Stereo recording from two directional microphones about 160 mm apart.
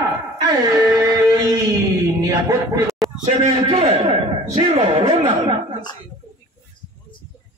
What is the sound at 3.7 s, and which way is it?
A man's voice, 40° right (ahead or behind).